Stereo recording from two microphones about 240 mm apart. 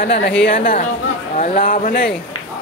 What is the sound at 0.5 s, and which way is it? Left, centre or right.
Speech, left.